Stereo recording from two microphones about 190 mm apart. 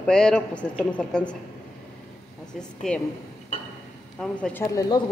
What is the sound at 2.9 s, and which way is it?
Speech, 5° left (ahead or behind).